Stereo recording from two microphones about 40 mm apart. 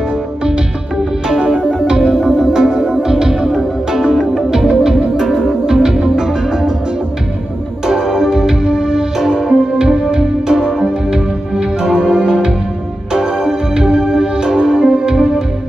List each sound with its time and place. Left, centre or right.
1.4 s music: right
7.8 s music: centre